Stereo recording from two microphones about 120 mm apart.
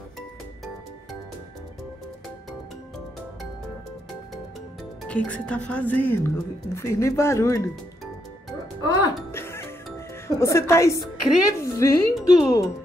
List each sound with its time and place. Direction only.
5.0 s speech: 10° left (ahead or behind)
9.3 s music: 20° left (ahead or behind)
9.9 s a woman's voice: 25° left (ahead or behind)